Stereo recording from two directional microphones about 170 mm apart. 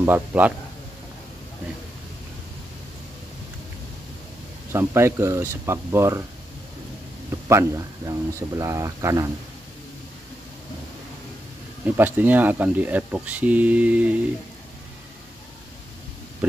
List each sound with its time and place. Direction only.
0.0 s speech: 10° right (ahead or behind)
4.7 s speech: 15° right (ahead or behind)
7.2 s speech: 20° right (ahead or behind)
12.0 s speech: 10° right (ahead or behind)